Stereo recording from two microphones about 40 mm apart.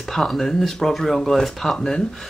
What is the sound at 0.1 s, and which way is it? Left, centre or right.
Speech, centre.